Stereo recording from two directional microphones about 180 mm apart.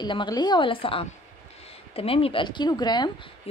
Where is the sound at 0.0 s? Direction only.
25° left (ahead or behind).